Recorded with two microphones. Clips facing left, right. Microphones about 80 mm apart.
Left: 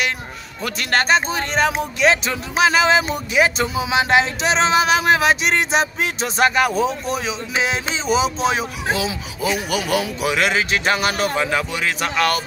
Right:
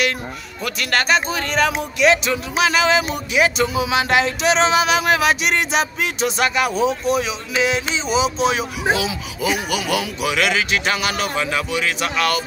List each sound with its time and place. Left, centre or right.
0.7 s speech: left